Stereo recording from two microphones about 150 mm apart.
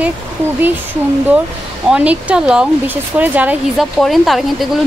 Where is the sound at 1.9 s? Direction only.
10° right (ahead or behind).